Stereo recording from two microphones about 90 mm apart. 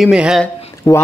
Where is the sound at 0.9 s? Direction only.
45° left (ahead or behind).